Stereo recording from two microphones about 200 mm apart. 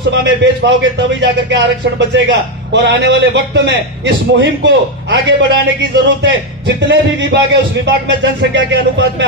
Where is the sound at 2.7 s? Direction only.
60° right (ahead or behind).